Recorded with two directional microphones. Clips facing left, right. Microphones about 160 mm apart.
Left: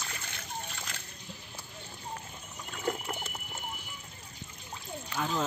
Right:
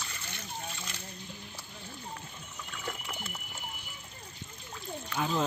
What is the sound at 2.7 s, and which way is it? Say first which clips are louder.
Pigeon: left 7 dB; 40° left (ahead or behind).